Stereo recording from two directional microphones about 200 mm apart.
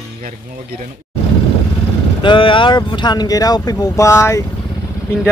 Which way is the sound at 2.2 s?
25° left (ahead or behind).